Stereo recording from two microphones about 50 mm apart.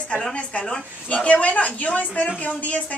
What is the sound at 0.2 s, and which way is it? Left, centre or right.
A woman's voice, centre.